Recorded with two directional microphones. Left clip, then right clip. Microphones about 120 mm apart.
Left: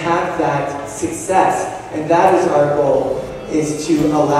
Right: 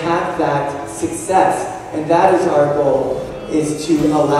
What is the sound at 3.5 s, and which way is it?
Speech, 20° right (ahead or behind).